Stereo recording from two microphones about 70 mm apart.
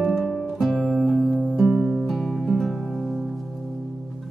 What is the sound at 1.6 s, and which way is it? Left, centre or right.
Music, centre.